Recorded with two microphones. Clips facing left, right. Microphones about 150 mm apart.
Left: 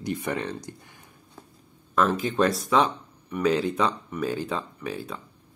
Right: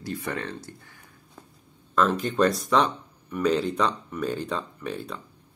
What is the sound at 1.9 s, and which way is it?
Speech, 5° left (ahead or behind).